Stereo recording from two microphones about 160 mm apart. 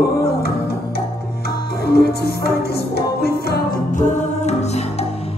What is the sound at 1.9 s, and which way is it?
Music, 85° left.